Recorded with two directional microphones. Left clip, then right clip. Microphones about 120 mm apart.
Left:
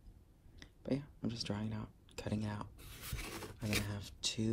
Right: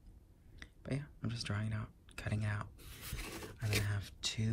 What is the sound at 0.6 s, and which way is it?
Speech, 15° left (ahead or behind).